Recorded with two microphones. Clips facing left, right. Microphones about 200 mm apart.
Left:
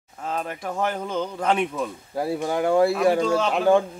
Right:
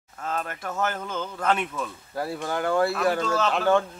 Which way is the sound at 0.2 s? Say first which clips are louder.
Left 2 dB; 5° left (ahead or behind).